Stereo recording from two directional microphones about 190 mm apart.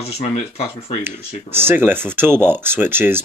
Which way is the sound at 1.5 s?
10° right (ahead or behind).